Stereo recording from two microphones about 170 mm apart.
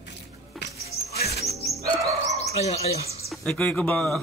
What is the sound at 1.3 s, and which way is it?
Music, 65° left (ahead or behind).